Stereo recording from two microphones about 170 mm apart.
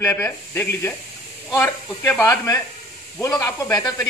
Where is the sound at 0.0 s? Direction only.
15° left (ahead or behind).